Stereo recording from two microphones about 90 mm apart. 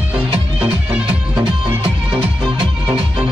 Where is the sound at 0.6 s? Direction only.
15° right (ahead or behind).